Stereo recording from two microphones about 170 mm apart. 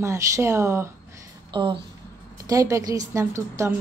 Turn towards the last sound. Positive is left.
turn(degrees=-15)  # may be behind; listen again after turning